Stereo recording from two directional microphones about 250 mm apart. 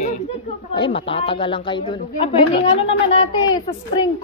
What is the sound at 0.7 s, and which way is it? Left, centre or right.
A woman's voice, centre.